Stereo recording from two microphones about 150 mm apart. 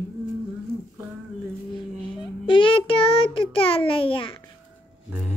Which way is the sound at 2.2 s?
35° left (ahead or behind).